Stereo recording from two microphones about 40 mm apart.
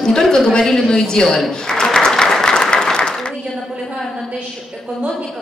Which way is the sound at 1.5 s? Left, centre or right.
Centre.